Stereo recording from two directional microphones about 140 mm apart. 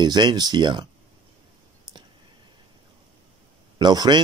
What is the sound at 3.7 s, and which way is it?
Speech, 30° right (ahead or behind).